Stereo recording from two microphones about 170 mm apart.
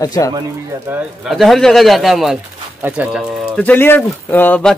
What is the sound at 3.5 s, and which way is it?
Speech, 10° left (ahead or behind).